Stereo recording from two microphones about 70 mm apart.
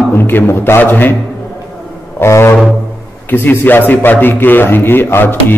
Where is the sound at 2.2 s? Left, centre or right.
Left.